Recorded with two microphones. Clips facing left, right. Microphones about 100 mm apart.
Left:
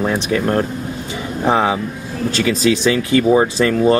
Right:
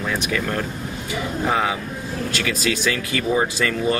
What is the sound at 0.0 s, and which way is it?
Speech, 30° left (ahead or behind).